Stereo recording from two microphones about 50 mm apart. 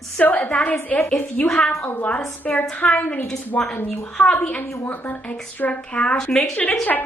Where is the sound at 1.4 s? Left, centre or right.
Centre.